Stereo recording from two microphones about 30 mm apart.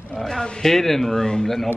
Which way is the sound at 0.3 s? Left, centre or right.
Centre.